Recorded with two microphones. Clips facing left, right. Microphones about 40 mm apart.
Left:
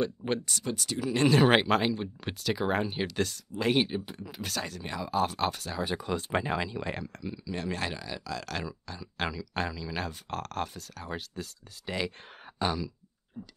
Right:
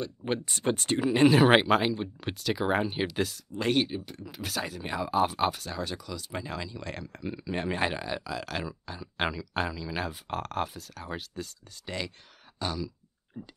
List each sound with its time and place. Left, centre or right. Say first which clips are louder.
0.5 s speech: right 5 dB; right
1.0 s speech: right 3 dB; centre
1.4 s speech: right 2 dB; centre
3.7 s speech: even; centre
5.9 s speech: left 7 dB; left
6.5 s speech: left 5 dB; left
7.2 s speech: right 4 dB; right
8.3 s speech: right 1 dB; centre
9.5 s speech: right 2 dB; centre
12.5 s a sound: left 3 dB; centre